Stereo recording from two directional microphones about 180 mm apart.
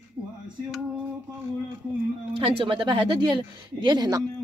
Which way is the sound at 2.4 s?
30° right (ahead or behind).